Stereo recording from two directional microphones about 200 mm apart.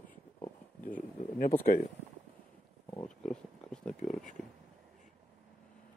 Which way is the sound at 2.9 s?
5° left (ahead or behind).